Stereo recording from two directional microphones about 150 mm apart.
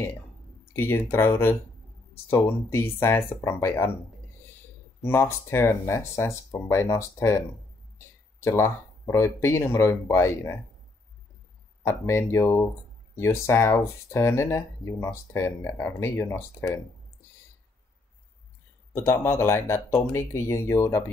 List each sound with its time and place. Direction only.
0.7 s speech: 15° left (ahead or behind)
5.0 s speech: 15° left (ahead or behind)
8.4 s speech: 15° left (ahead or behind)
11.8 s speech: 15° left (ahead or behind)
18.9 s speech: 15° left (ahead or behind)